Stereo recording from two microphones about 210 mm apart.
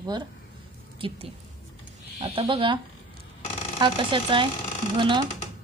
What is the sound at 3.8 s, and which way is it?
Speech, 25° right (ahead or behind).